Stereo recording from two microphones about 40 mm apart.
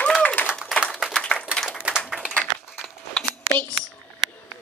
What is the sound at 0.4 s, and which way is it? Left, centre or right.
Applause, left.